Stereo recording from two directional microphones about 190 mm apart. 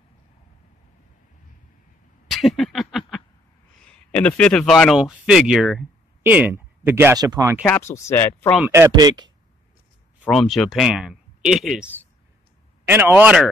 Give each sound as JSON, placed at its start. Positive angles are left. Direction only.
{"t": 2.2, "sound": "a sound", "side_deg": 0}
{"t": 4.1, "sound": "speech", "side_deg": 5}
{"t": 7.6, "sound": "speech", "side_deg": 10}
{"t": 8.5, "sound": "speech", "side_deg": -10}
{"t": 10.2, "sound": "speech", "side_deg": 0}